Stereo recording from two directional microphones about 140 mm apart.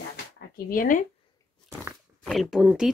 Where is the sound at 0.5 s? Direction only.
85° left.